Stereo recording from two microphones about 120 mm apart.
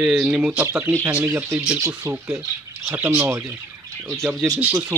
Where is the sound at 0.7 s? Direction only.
25° right (ahead or behind).